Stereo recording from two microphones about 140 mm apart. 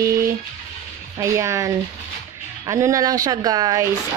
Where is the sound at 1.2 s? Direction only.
20° right (ahead or behind).